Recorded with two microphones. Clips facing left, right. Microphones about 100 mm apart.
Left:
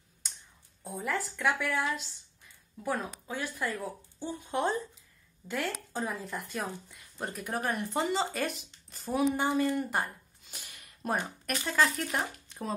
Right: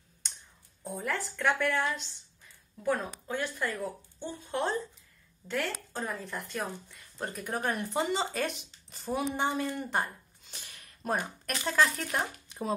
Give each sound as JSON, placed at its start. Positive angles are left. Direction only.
{"t": 0.8, "sound": "speech", "side_deg": 0}
{"t": 4.2, "sound": "speech", "side_deg": 15}